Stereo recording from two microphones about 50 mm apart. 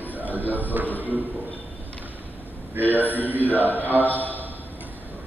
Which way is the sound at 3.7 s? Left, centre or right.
Right.